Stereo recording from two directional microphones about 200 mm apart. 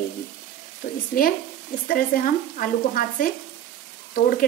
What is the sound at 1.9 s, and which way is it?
A woman's voice, 45° left (ahead or behind).